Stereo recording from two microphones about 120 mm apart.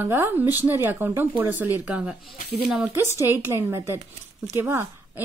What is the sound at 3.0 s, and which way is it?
A woman's voice, 20° right (ahead or behind).